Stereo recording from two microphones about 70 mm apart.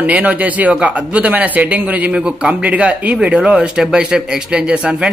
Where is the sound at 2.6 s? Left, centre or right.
Right.